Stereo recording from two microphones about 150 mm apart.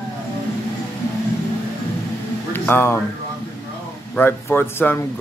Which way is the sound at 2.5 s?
15° left (ahead or behind).